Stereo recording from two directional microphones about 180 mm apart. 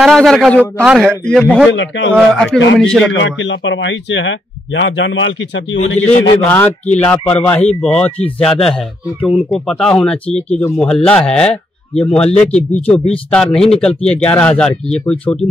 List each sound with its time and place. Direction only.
0.0 s speech: centre (ahead or behind)
1.7 s a man's voice: 90° left
2.1 s speech: centre (ahead or behind)
3.1 s a man's voice: 90° left
7.0 s speech: 10° left (ahead or behind)
12.3 s speech: 35° left (ahead or behind)
12.5 s speech: 5° left (ahead or behind)